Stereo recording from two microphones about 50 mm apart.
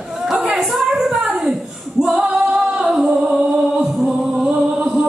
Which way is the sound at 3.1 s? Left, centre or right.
Right.